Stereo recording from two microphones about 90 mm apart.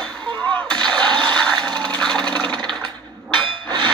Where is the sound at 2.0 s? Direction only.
10° left (ahead or behind).